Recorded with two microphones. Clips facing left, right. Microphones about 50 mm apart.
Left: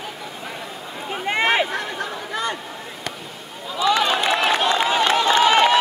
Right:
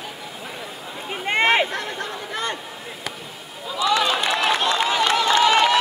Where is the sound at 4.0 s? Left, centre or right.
Centre.